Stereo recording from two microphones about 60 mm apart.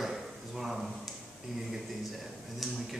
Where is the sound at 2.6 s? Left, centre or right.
Centre.